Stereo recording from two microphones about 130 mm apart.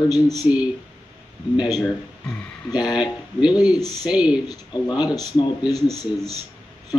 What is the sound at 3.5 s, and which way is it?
Speech, 30° left (ahead or behind).